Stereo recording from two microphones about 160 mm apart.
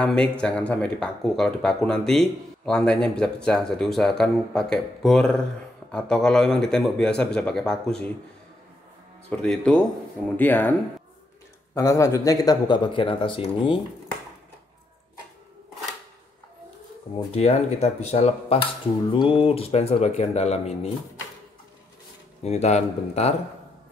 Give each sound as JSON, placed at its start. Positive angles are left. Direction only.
{"t": 0.0, "sound": "speech", "side_deg": 5}
{"t": 9.3, "sound": "speech", "side_deg": 5}
{"t": 11.7, "sound": "speech", "side_deg": 20}
{"t": 17.4, "sound": "speech", "side_deg": 40}
{"t": 22.4, "sound": "speech", "side_deg": 40}